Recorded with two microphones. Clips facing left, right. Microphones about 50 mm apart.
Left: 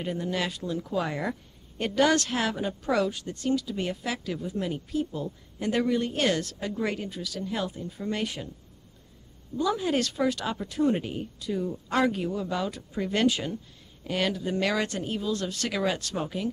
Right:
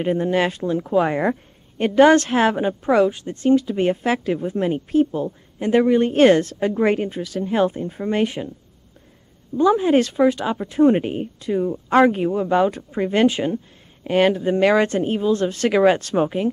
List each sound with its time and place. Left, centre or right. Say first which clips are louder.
0.0 s a woman's voice: right 10 dB; right
9.6 s a woman's voice: right 10 dB; right